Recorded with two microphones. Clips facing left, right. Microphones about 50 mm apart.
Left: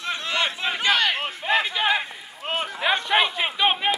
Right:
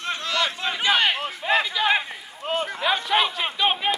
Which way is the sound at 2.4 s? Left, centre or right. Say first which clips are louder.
Right 1 dB; left.